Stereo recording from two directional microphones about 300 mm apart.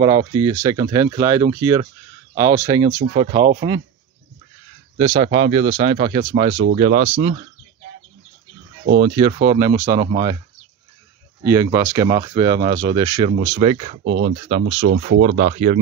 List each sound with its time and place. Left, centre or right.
0.4 s speech: centre
4.9 s speech: centre
9.1 s speech: centre
11.4 s speech: centre
14.0 s speech: right
14.5 s speech: centre